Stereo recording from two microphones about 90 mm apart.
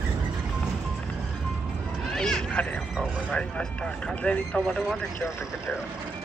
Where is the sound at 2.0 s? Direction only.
5° left (ahead or behind).